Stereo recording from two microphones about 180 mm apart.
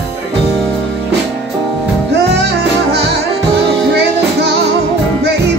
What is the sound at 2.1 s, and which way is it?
Music, 70° right (ahead or behind).